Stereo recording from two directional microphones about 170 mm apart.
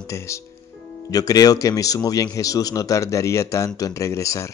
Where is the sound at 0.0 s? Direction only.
15° left (ahead or behind).